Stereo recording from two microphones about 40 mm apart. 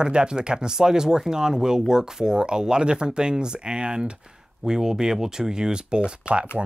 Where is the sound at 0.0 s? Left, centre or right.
Right.